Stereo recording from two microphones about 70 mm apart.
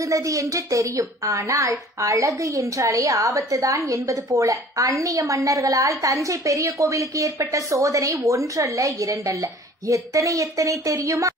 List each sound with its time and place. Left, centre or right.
0.0 s a woman's voice: right